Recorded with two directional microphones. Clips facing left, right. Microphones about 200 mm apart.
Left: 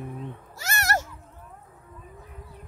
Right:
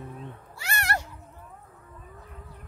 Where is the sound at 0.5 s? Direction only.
40° left (ahead or behind).